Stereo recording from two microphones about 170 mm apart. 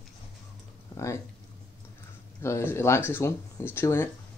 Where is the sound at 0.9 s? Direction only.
15° left (ahead or behind).